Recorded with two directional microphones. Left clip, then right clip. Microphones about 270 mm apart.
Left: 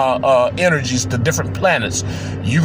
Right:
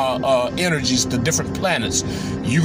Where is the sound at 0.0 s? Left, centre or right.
Centre.